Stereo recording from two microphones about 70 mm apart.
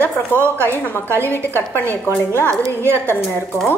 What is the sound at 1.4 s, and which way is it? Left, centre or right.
Speech, left.